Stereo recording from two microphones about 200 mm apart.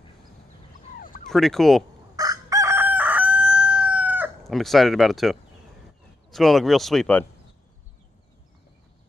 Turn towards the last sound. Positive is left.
turn(degrees=5)  # may be behind; listen again after turning